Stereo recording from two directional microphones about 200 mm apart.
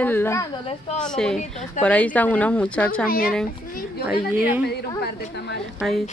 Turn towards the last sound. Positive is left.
turn(degrees=0)  # may be behind; listen again after turning